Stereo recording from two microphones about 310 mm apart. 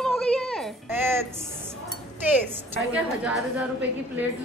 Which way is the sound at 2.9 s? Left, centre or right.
Centre.